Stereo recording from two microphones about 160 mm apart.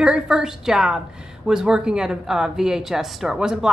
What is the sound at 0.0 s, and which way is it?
A woman's voice, 5° right (ahead or behind).